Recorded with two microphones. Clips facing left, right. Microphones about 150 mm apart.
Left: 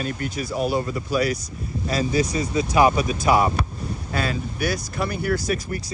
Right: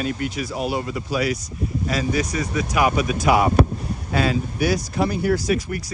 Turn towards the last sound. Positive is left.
turn(degrees=55)  # may be behind; listen again after turning